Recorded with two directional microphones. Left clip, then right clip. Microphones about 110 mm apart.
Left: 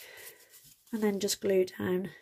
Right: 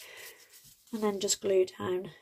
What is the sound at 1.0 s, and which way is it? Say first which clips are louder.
Speech: even; 55° left (ahead or behind).